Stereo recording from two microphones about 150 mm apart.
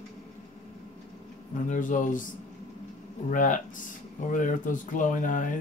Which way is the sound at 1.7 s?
60° left (ahead or behind).